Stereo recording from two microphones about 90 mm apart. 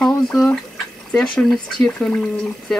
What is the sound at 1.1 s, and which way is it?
Speech, 10° left (ahead or behind).